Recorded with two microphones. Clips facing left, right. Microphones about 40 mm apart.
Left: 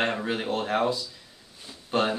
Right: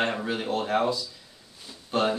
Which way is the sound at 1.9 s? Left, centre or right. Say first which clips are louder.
Even; left.